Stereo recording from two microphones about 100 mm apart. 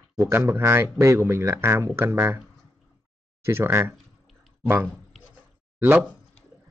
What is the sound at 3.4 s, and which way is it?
Speech, 25° right (ahead or behind).